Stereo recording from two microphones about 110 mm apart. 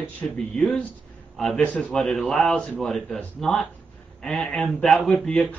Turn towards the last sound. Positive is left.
turn(degrees=5)  # may be behind; listen again after turning